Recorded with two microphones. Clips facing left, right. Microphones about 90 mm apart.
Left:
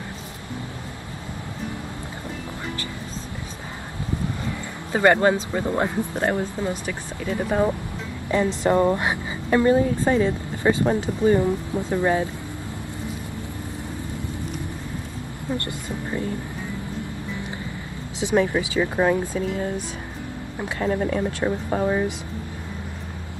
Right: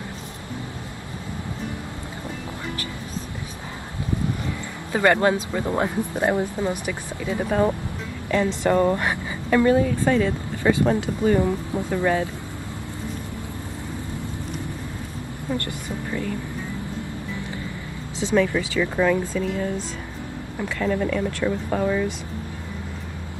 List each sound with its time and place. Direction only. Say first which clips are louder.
4.9 s speech: left 1 dB; 25° left (ahead or behind)
6.1 s speech: right 4 dB; 15° right (ahead or behind)
7.4 s speech: right 1 dB; 10° left (ahead or behind)
8.3 s speech: even; 20° left (ahead or behind)
15.5 s speech: even; 25° left (ahead or behind)
18.2 s speech: even; 20° left (ahead or behind)
20.8 s speech: even; 35° left (ahead or behind)
21.3 s speech: even; 20° left (ahead or behind)